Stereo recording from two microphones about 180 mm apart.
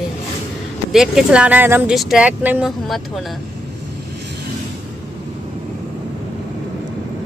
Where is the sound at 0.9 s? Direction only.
5° right (ahead or behind).